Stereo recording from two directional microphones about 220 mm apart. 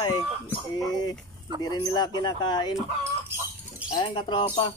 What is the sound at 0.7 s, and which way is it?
Speech, 15° left (ahead or behind).